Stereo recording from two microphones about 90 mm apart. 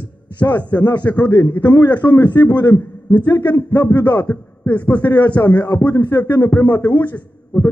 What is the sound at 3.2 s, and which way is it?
A man's voice, 20° left (ahead or behind).